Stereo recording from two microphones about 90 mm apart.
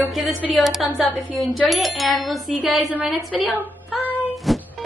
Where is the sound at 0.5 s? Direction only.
Centre (ahead or behind).